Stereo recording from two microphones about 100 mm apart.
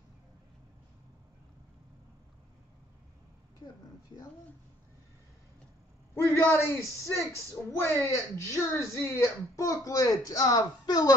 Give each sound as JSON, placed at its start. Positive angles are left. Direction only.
{"t": 6.2, "sound": "a man's voice", "side_deg": 25}
{"t": 7.6, "sound": "a woman's voice", "side_deg": 5}
{"t": 8.0, "sound": "speech", "side_deg": 30}